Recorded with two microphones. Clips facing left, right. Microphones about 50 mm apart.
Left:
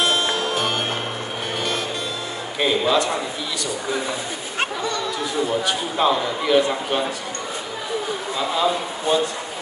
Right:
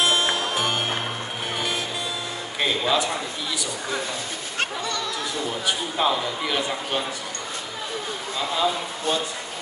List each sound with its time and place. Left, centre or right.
0.0 s music: centre
2.6 s speech: centre
4.6 s chatter: centre
5.7 s speech: centre
8.4 s speech: centre